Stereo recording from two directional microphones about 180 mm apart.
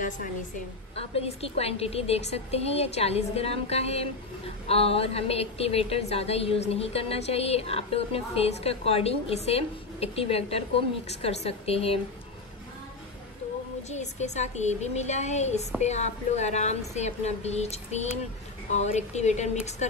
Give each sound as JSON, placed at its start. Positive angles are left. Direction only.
{"t": 0.9, "sound": "a woman's voice", "side_deg": 35}
{"t": 13.8, "sound": "a woman's voice", "side_deg": 40}